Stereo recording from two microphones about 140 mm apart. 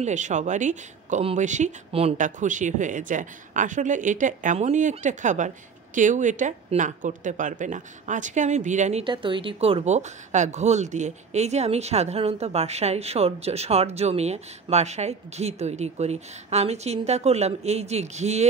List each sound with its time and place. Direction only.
0.0 s a woman's voice: 60° right (ahead or behind)
1.9 s a woman's voice: 45° right (ahead or behind)
2.1 s a woman's voice: 65° right (ahead or behind)
9.0 s a woman's voice: 35° right (ahead or behind); by 18.5 s 50° right (ahead or behind)